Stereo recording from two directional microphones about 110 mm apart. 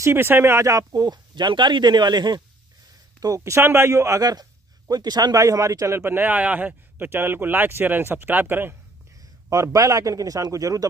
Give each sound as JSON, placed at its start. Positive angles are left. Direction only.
{"t": 0.0, "sound": "a man's voice", "side_deg": -20}
{"t": 9.5, "sound": "speech", "side_deg": -30}